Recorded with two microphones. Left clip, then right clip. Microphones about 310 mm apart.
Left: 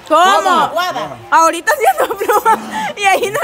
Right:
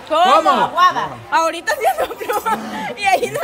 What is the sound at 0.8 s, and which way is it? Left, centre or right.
Speech, left.